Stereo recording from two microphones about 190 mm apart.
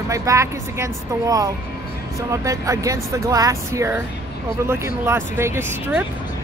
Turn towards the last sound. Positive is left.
turn(degrees=-15)  # may be behind; listen again after turning